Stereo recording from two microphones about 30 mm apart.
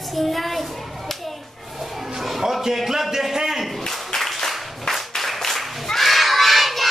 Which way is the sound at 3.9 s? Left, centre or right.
Centre.